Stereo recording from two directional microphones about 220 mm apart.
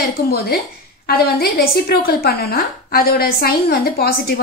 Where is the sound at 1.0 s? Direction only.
45° left (ahead or behind).